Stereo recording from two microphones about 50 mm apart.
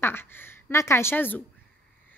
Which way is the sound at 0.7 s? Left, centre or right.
Left.